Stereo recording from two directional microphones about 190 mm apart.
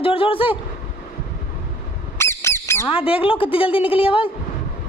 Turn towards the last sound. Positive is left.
turn(degrees=30)  # may be behind; listen again after turning